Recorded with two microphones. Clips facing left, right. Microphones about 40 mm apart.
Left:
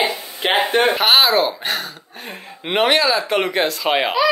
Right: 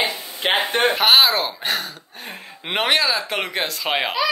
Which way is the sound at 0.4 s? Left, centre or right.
Centre.